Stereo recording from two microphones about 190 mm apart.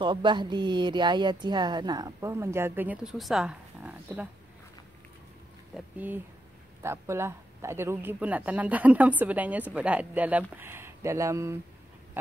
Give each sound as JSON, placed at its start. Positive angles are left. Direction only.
{"t": 0.0, "sound": "speech", "side_deg": -25}
{"t": 5.8, "sound": "speech", "side_deg": -10}